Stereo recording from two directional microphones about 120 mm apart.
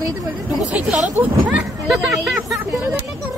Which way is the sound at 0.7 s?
10° right (ahead or behind).